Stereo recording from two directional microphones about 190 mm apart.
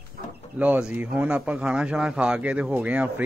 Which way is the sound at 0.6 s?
5° right (ahead or behind).